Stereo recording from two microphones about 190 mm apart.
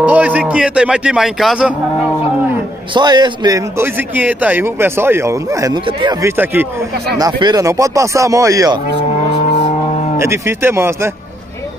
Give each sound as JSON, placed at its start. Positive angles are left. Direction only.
{"t": 0.0, "sound": "speech", "side_deg": -10}
{"t": 2.9, "sound": "a man's voice", "side_deg": -25}
{"t": 6.3, "sound": "a man's voice", "side_deg": -10}
{"t": 7.2, "sound": "a man's voice", "side_deg": -20}
{"t": 10.1, "sound": "a man's voice", "side_deg": -15}